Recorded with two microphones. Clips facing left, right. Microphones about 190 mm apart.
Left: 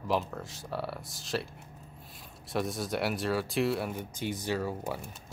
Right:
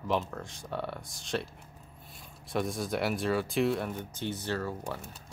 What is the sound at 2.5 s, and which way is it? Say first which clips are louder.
Speech: even; centre (ahead or behind).